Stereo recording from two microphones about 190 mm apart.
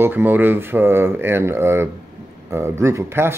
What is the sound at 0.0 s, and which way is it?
Speech, 10° right (ahead or behind).